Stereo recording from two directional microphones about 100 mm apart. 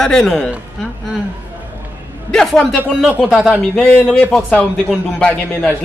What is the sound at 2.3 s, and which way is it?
Speech, 5° left (ahead or behind).